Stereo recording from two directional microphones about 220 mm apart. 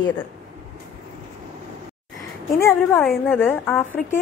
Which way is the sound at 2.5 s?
10° left (ahead or behind).